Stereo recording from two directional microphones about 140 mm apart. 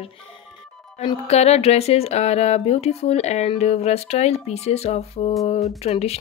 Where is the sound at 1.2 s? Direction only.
50° left (ahead or behind).